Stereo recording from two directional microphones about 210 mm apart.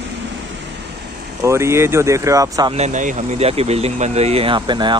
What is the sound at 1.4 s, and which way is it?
Speech, 15° right (ahead or behind).